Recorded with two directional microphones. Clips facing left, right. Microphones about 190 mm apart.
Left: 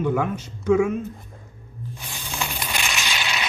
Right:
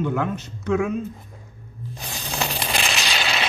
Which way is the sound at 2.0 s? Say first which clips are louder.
Right 4 dB; 35° right (ahead or behind).